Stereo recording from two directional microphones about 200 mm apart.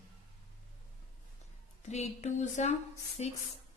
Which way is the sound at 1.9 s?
35° left (ahead or behind).